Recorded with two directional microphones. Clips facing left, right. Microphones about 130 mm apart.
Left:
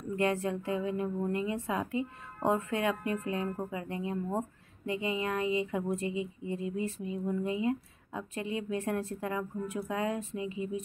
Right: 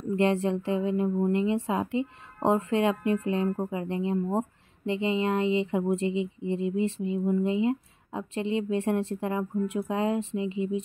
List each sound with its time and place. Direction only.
0.1 s speech: 25° right (ahead or behind)